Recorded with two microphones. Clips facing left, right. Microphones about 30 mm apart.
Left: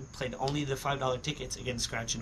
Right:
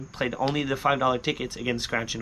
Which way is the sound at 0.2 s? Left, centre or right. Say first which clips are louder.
Right 7 dB; right.